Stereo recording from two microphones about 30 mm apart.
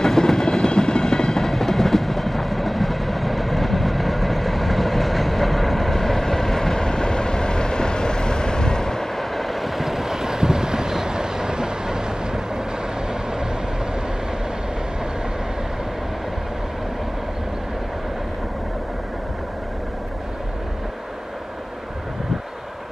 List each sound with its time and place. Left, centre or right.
0.0 s train: centre
9.4 s vehicle: centre; by 12.0 s right